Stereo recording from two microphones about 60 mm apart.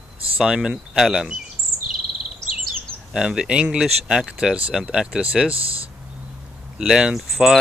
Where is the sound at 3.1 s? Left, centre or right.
Centre.